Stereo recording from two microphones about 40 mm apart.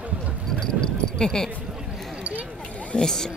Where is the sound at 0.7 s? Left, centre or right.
Centre.